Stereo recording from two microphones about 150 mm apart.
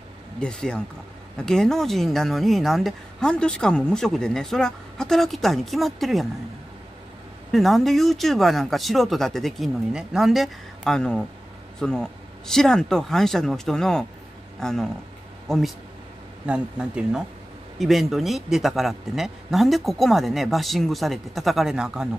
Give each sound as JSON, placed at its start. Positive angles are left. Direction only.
{"t": 0.4, "sound": "speech", "side_deg": 5}
{"t": 7.5, "sound": "speech", "side_deg": 0}